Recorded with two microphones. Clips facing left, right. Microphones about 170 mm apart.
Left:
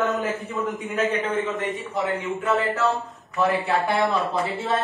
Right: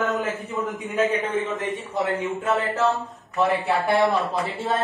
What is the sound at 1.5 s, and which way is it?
Speech, 20° left (ahead or behind).